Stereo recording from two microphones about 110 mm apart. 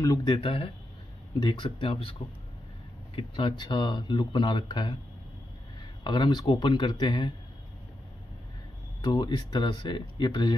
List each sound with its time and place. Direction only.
0.0 s speech: 35° left (ahead or behind); by 2.1 s 55° left (ahead or behind)
3.2 s speech: 50° left (ahead or behind)
9.0 s speech: 40° left (ahead or behind)